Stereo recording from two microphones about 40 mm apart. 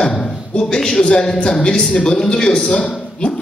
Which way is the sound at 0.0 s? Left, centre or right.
Centre.